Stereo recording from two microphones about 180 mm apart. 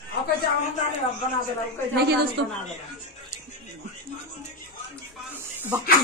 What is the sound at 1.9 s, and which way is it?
Speech, 65° right (ahead or behind).